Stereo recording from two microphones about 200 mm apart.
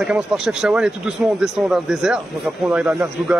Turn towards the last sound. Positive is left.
turn(degrees=-10)  # may be behind; listen again after turning